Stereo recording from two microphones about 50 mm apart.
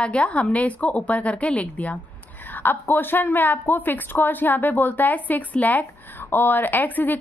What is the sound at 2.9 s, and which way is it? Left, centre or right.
A woman's voice, left.